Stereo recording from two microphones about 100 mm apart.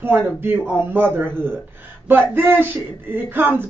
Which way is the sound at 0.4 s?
20° right (ahead or behind).